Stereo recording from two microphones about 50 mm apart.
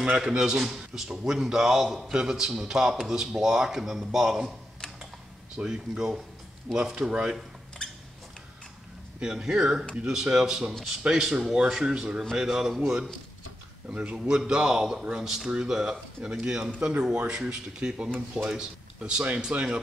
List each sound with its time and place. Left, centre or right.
0.2 s speech: centre
2.1 s speech: centre
5.6 s speech: centre
9.2 s speech: centre
11.8 s speech: centre
13.8 s a man's voice: right
14.1 s a man's voice: centre